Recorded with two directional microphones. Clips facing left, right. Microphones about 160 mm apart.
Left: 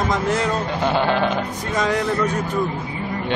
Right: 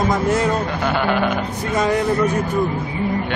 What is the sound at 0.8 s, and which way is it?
Speech, 25° left (ahead or behind).